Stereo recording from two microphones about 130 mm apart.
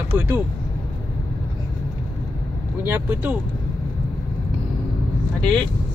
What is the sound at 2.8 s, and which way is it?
Speech, 15° right (ahead or behind).